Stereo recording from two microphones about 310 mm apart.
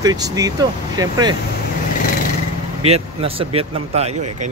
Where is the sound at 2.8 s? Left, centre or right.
Centre.